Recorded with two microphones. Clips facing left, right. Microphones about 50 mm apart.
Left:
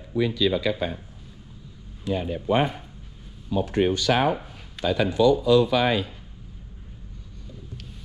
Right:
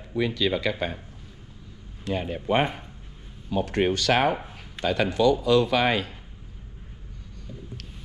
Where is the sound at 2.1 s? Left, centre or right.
Right.